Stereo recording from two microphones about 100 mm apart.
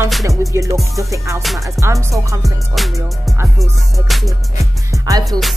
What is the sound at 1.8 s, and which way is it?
Music, 30° right (ahead or behind).